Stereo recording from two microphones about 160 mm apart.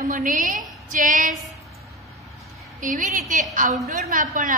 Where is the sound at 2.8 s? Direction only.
55° right (ahead or behind).